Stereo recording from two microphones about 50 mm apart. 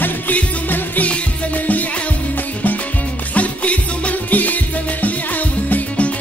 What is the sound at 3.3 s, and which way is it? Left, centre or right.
Music, left.